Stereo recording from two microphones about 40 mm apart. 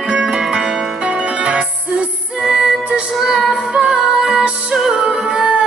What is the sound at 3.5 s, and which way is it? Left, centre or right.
Music, right.